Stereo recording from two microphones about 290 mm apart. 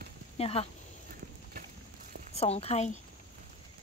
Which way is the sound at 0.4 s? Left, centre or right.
Centre.